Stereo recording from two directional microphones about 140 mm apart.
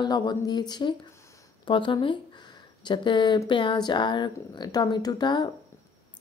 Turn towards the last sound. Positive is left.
turn(degrees=30)  # may be behind; listen again after turning